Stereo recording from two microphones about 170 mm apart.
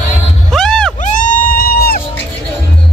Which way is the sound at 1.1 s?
50° left (ahead or behind).